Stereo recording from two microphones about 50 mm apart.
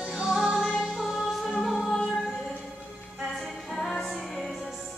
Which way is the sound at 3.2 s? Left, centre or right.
Centre.